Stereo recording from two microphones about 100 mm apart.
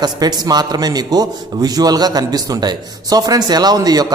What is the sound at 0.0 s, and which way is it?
A man's voice, 45° right (ahead or behind).